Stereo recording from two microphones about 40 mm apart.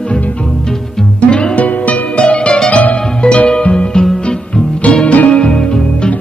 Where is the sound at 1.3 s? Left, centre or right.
Left.